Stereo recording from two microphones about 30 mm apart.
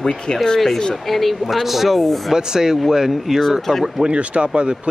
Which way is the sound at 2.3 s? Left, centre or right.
Right.